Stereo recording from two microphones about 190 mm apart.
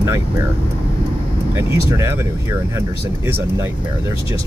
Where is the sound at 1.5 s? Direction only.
15° right (ahead or behind).